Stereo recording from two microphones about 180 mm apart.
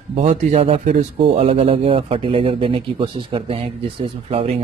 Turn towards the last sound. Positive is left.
turn(degrees=-35)  # may be behind; listen again after turning